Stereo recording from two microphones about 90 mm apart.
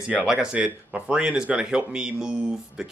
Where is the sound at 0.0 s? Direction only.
10° right (ahead or behind).